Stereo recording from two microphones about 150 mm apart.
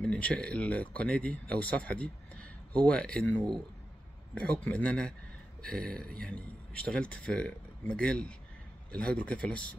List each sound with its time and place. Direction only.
0.0 s speech: 10° left (ahead or behind)